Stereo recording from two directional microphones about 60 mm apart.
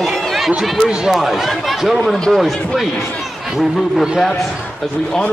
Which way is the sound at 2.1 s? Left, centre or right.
Centre.